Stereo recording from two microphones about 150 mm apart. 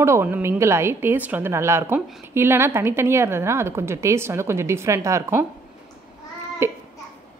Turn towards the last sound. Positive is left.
turn(degrees=-15)  # may be behind; listen again after turning